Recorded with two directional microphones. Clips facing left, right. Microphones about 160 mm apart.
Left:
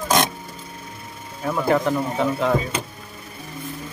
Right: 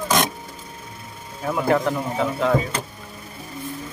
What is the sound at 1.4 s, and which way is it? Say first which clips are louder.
Speech: even; centre (ahead or behind).